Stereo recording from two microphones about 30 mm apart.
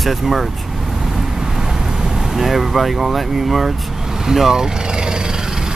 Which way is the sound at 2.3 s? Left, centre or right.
Centre.